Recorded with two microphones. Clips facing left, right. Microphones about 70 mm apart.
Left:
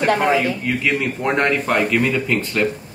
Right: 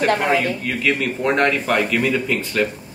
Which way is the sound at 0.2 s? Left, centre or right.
Centre.